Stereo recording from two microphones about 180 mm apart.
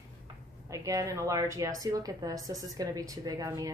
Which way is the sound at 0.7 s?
20° right (ahead or behind).